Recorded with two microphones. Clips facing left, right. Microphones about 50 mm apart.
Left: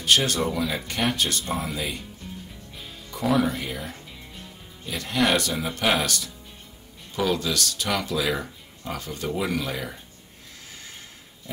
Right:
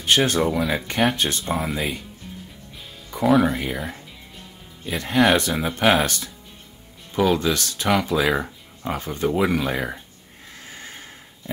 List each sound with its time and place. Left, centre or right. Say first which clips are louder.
0.0 s speech: right 3 dB; right
0.5 s speech: right 4 dB; centre
1.1 s speech: right 2 dB; right
1.4 s speech: right 4 dB; centre
1.7 s speech: right 4 dB; right
3.1 s speech: right 5 dB; centre
3.4 s speech: right 4 dB; right
7.3 s speech: right 4 dB; right
10.6 s neigh: right 5 dB; right